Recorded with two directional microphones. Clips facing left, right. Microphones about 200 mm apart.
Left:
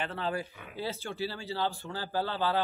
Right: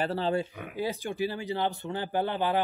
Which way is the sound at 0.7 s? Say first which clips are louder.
Right 4 dB; 15° right (ahead or behind).